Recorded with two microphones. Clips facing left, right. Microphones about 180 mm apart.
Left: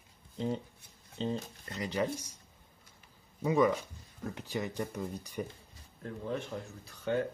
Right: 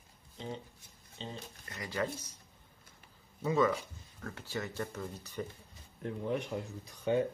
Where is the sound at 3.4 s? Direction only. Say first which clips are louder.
Left 2 dB; 15° left (ahead or behind).